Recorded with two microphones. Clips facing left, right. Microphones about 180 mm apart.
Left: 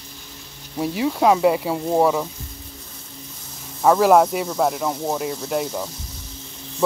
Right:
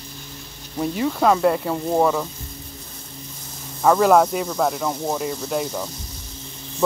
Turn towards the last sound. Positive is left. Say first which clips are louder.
# left 1 dB
turn(degrees=5)  # may be behind; listen again after turning